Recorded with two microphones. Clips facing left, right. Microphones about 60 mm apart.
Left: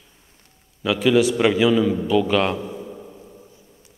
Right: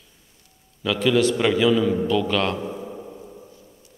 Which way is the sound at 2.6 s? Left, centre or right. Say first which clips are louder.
Right 1 dB; centre.